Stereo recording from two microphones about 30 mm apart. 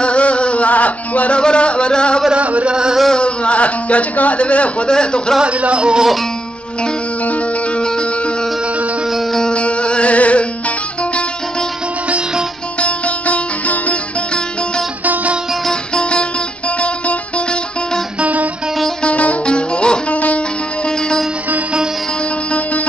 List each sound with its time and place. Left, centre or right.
0.0 s music: left
1.3 s music: left
2.3 s chant: right
2.7 s a sound: right
3.2 s speech: left
4.8 s music: left
5.4 s music: right
9.5 s music: left
12.8 s music: left
15.9 s music: left
18.2 s guitar: right
19.0 s music: left
19.4 s music: left
20.1 s music: left